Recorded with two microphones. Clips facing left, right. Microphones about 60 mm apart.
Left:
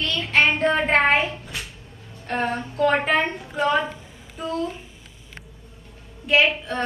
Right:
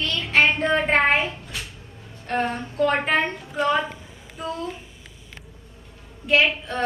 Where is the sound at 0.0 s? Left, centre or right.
Centre.